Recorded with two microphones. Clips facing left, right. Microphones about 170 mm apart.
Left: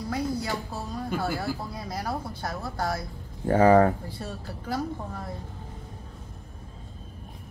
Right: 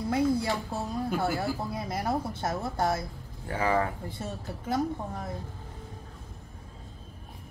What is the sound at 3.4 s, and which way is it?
Speech, 40° left (ahead or behind).